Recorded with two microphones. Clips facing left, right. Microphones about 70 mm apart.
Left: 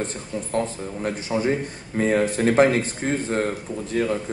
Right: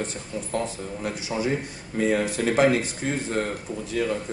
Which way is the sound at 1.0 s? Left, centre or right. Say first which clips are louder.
Left 4 dB; left.